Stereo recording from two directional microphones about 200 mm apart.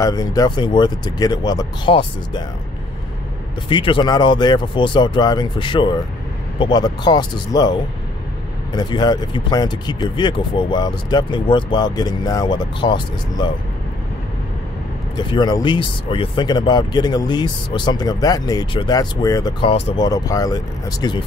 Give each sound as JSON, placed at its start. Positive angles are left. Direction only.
{"t": 0.0, "sound": "speech", "side_deg": 20}
{"t": 3.6, "sound": "speech", "side_deg": 25}
{"t": 15.1, "sound": "speech", "side_deg": 20}